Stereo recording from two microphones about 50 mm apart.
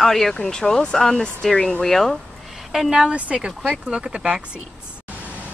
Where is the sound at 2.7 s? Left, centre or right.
Centre.